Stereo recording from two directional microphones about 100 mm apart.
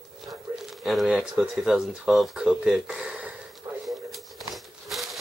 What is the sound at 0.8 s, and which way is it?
Speech, 5° right (ahead or behind).